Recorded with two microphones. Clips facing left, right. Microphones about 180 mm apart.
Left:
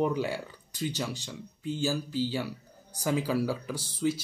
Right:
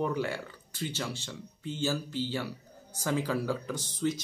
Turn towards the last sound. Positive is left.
turn(degrees=10)  # may be behind; listen again after turning